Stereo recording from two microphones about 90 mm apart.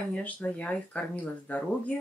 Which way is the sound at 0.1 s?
15° left (ahead or behind).